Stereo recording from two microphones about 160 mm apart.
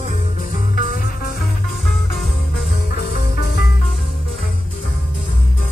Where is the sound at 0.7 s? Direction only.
60° left (ahead or behind).